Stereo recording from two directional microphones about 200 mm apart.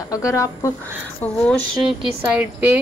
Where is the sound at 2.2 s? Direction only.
10° right (ahead or behind).